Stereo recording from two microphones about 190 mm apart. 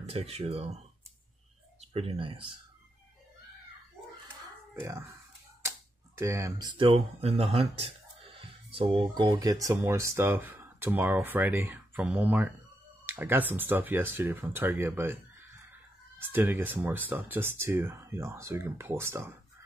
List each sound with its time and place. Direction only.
0.0 s speech: 30° right (ahead or behind)
1.8 s speech: 30° right (ahead or behind)
4.8 s speech: 15° right (ahead or behind)
16.2 s speech: 10° right (ahead or behind)